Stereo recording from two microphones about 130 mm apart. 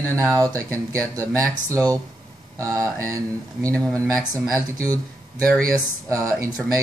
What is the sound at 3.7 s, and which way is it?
Speech, 10° left (ahead or behind).